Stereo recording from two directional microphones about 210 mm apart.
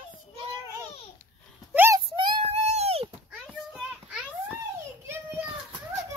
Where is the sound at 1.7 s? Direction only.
10° right (ahead or behind).